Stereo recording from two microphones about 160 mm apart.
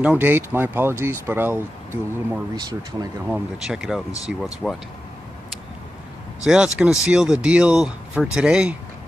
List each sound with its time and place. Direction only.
0.0 s speech: 10° right (ahead or behind)
2.5 s speech: 25° right (ahead or behind)
3.6 s speech: 5° right (ahead or behind)
6.4 s speech: 5° right (ahead or behind)